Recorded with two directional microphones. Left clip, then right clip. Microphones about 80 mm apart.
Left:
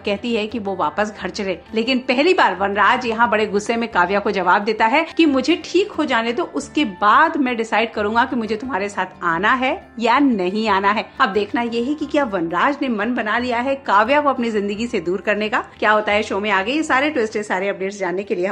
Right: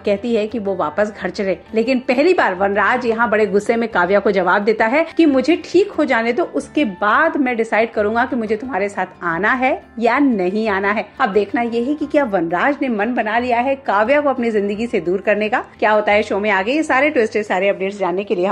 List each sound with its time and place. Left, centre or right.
0.0 s a woman's voice: right
2.8 s a woman's voice: right
3.3 s a woman's voice: right
6.7 s a woman's voice: right
9.2 s a woman's voice: right
10.6 s a woman's voice: right
12.4 s a woman's voice: right
12.8 s a woman's voice: right
16.0 s a woman's voice: right